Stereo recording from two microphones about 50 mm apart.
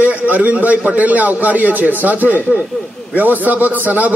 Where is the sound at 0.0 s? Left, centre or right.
Right.